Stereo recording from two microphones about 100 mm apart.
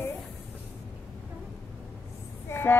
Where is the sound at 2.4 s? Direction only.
25° left (ahead or behind).